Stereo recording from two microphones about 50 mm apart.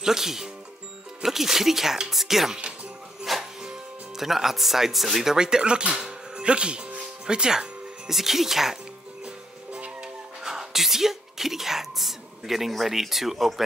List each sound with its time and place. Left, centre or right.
0.0 s speech: centre
3.3 s music: centre
4.2 s speech: centre
9.2 s music: right
10.4 s speech: centre